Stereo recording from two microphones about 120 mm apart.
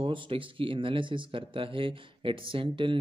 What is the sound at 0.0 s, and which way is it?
Speech, 45° right (ahead or behind).